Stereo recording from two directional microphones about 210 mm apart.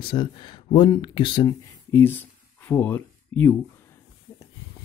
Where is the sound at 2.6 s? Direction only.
10° left (ahead or behind).